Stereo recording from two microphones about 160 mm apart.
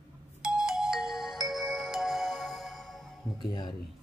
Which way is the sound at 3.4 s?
30° left (ahead or behind).